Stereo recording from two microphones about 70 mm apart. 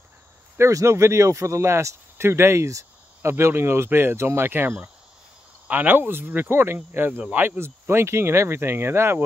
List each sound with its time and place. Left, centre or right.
0.6 s speech: right